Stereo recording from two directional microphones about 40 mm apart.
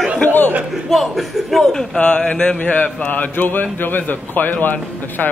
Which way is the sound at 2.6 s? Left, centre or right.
Left.